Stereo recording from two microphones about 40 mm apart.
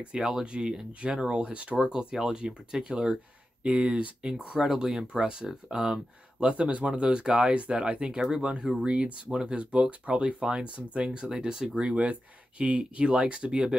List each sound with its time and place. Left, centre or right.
0.1 s speech: right
1.9 s speech: centre
6.4 s speech: right
11.1 s speech: right
11.8 s speech: right